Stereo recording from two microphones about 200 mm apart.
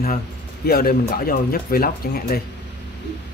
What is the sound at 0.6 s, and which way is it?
Speech, 50° left (ahead or behind).